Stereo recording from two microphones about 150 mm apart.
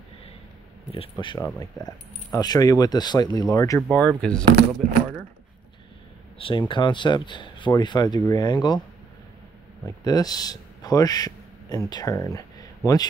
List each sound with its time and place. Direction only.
0.9 s speech: 35° left (ahead or behind)
4.2 s speech: 5° left (ahead or behind)
4.6 s speech: 65° right (ahead or behind)
6.3 s speech: 35° left (ahead or behind)
10.0 s speech: 25° left (ahead or behind)